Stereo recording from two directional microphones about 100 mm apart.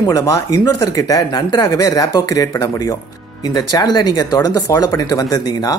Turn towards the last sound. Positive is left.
turn(degrees=40)  # may be behind; listen again after turning